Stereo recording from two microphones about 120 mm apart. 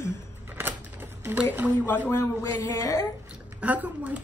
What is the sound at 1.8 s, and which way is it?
Speech, 15° left (ahead or behind).